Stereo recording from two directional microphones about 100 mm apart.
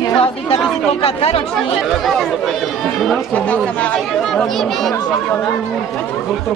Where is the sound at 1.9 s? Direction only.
Centre (ahead or behind).